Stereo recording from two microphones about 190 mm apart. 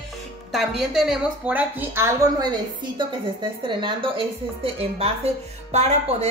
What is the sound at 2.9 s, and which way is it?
Speech, 25° right (ahead or behind).